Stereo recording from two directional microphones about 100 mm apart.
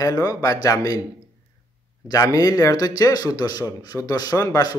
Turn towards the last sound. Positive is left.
turn(degrees=40)  # may be behind; listen again after turning